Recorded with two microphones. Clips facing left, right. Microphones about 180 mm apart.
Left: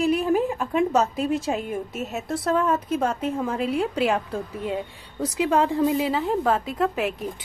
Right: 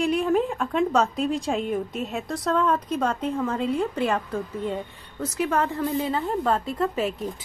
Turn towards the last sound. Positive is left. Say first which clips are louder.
# left 1 dB
turn(degrees=0)  # may be behind; listen again after turning